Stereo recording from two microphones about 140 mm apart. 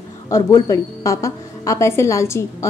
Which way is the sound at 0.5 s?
20° left (ahead or behind).